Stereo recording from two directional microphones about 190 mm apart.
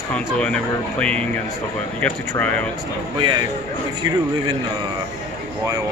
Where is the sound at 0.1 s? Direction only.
5° left (ahead or behind).